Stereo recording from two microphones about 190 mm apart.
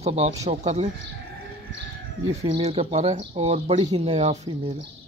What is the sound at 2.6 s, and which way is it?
Speech, 35° right (ahead or behind).